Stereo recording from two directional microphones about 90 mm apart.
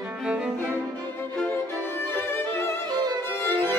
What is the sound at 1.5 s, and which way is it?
Violin, 25° left (ahead or behind).